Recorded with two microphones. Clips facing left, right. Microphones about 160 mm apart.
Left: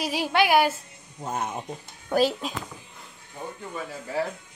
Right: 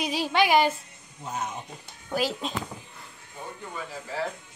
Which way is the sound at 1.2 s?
50° left (ahead or behind).